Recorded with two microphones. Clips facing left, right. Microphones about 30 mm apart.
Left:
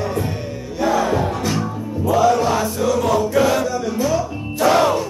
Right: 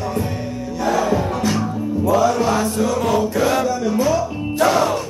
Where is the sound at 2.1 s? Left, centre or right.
Centre.